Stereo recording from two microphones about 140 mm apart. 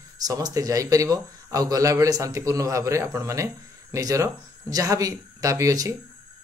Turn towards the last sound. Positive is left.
turn(degrees=-25)  # may be behind; listen again after turning